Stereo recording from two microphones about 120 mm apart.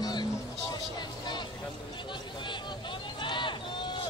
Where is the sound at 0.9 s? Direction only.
40° left (ahead or behind).